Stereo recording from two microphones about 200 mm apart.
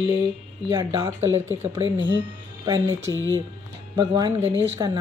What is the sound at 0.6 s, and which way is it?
Speech, 15° right (ahead or behind).